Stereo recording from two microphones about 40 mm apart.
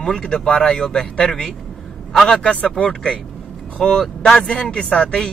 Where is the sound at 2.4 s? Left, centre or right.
Left.